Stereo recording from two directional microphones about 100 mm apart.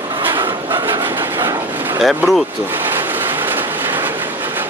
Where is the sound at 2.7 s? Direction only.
20° right (ahead or behind).